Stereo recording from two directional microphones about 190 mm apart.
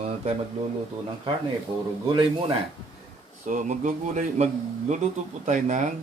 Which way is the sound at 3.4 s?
40° right (ahead or behind).